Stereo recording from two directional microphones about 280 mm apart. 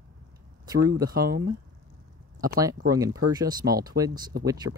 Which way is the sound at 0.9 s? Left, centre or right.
Centre.